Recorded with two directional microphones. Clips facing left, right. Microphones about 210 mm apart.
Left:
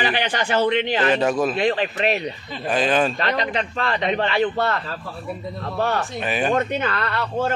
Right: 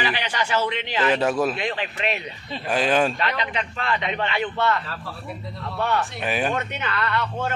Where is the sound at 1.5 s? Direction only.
35° left (ahead or behind).